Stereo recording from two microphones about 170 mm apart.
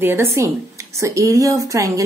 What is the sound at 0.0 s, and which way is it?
A woman's voice, 15° right (ahead or behind).